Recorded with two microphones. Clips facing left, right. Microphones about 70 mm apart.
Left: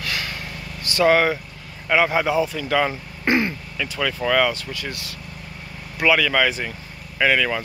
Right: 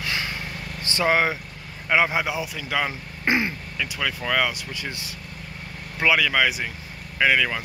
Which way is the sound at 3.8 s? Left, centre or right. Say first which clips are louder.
Left 4 dB; centre.